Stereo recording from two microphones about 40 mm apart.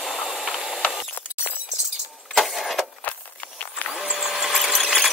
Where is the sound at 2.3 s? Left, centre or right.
Centre.